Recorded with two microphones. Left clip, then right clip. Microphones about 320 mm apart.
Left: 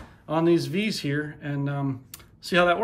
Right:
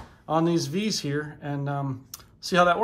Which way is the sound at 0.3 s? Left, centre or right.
Centre.